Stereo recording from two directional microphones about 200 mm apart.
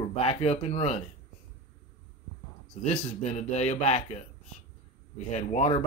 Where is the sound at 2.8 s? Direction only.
35° left (ahead or behind).